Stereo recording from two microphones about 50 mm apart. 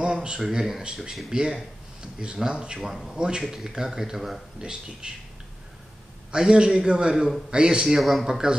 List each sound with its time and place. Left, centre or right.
0.0 s a sound: centre
0.5 s speech: centre
2.8 s speech: centre
3.1 s speech: centre
3.4 s speech: centre
6.3 s speech: centre
8.0 s speech: centre
8.3 s speech: centre